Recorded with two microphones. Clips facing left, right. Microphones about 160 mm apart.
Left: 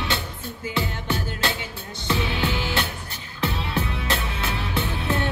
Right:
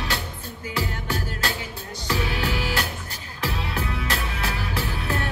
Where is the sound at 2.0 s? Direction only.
25° left (ahead or behind).